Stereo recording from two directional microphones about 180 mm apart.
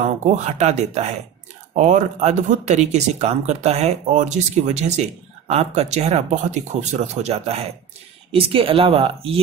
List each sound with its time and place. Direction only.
0.0 s speech: 40° right (ahead or behind)